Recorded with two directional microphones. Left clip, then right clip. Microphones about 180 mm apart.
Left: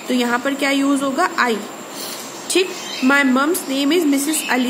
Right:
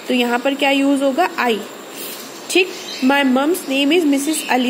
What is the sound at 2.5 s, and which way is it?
Speech, 10° right (ahead or behind).